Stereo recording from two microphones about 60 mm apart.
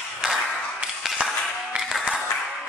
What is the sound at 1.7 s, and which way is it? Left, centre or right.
Music, centre.